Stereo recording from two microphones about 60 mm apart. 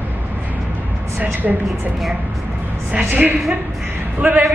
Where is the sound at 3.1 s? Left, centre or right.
Right.